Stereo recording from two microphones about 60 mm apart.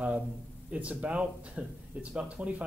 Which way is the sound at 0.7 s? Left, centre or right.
Right.